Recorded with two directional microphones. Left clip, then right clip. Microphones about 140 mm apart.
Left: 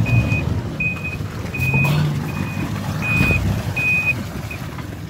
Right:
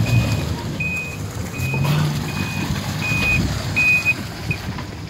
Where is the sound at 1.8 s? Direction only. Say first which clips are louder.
Left 3 dB; 10° left (ahead or behind).